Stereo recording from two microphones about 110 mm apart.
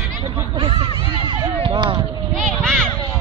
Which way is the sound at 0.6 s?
50° right (ahead or behind).